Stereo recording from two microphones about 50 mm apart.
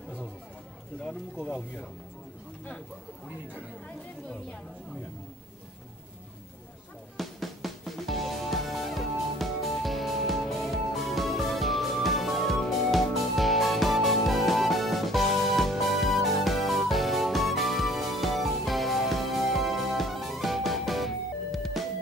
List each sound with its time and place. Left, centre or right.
1.0 s speech: left
7.2 s music: centre